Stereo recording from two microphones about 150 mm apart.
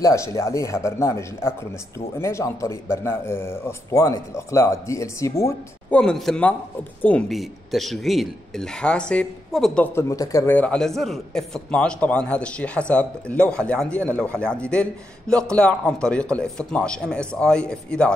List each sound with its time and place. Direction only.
0.0 s speech: 20° left (ahead or behind)
5.9 s speech: 5° left (ahead or behind)
9.9 s speech: 20° left (ahead or behind)
10.5 s speech: 10° left (ahead or behind)